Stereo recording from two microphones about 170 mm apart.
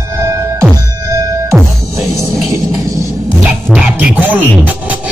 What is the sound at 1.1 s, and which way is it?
Music, 20° right (ahead or behind).